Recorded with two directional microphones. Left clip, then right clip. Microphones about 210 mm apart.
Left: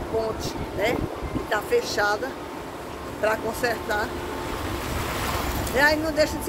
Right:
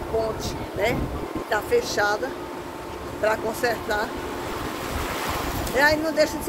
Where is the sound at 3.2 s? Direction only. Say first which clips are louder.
Right 1 dB; 5° left (ahead or behind).